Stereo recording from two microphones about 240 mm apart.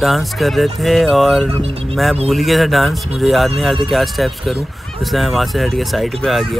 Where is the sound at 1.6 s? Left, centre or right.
Right.